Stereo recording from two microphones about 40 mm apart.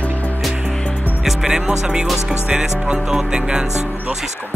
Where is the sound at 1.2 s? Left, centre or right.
Centre.